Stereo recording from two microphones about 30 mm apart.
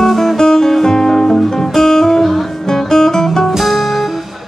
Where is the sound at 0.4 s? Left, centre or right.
Centre.